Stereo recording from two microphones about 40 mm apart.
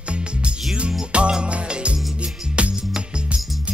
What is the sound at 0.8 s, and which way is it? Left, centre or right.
Music, right.